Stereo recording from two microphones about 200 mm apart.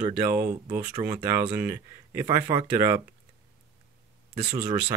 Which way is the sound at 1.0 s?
25° right (ahead or behind).